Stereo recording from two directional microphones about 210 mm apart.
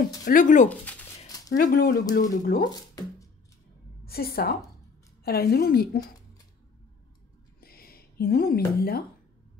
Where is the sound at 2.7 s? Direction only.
15° left (ahead or behind).